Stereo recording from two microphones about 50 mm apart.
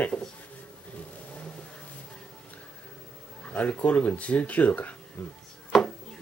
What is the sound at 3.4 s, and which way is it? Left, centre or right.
Speech, left.